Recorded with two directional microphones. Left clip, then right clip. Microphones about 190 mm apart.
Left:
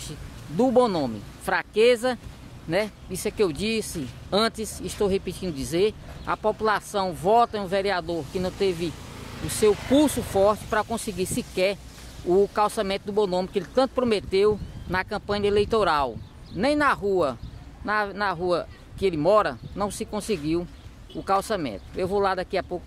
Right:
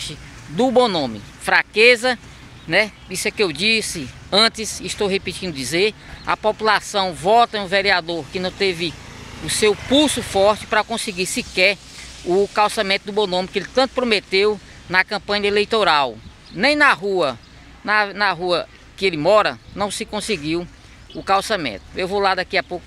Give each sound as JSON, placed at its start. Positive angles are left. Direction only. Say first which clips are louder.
{"t": 0.7, "sound": "speech", "louder": "right 5 dB", "side_deg": -5}